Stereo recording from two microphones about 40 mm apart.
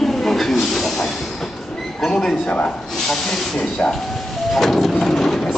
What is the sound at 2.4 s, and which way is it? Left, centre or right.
Speech, left.